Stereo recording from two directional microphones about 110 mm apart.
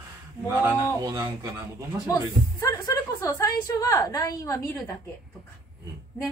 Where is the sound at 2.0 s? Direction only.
35° left (ahead or behind).